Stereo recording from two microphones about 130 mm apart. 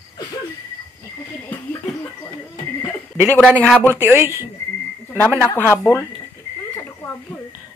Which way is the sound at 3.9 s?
15° right (ahead or behind).